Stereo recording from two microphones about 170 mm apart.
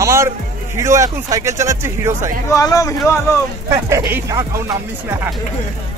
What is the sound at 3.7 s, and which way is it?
Speech, 15° right (ahead or behind).